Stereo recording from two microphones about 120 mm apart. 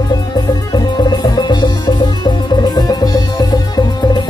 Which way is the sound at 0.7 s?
35° left (ahead or behind).